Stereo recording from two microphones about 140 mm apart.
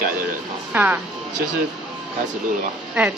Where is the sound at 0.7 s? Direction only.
10° right (ahead or behind).